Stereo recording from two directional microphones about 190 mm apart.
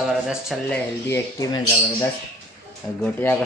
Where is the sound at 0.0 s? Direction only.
Centre (ahead or behind).